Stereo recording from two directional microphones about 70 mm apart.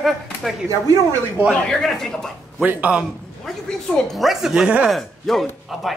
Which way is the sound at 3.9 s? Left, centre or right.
Centre.